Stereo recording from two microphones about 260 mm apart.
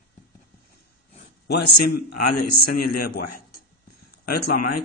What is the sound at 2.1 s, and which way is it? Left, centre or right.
Speech, left.